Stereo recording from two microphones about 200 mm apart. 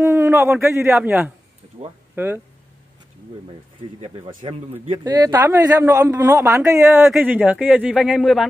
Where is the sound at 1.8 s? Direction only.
30° right (ahead or behind).